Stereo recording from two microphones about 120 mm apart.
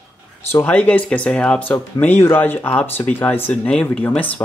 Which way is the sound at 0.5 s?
15° left (ahead or behind).